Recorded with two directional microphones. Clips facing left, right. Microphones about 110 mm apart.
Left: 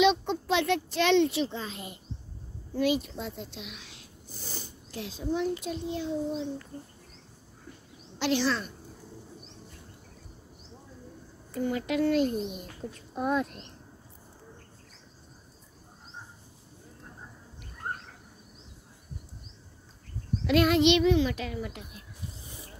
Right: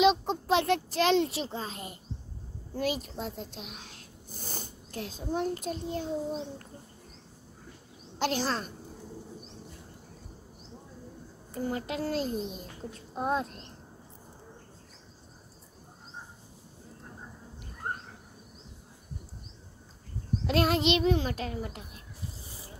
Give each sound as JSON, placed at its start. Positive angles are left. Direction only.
{"t": 0.0, "sound": "a child's voice", "side_deg": -35}
{"t": 8.2, "sound": "a woman's voice", "side_deg": -45}
{"t": 11.5, "sound": "speech", "side_deg": -30}
{"t": 20.4, "sound": "a child's voice", "side_deg": -35}